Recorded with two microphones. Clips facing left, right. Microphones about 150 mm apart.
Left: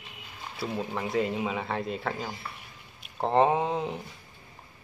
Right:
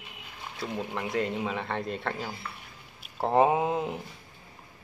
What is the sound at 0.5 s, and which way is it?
Speech, 5° left (ahead or behind).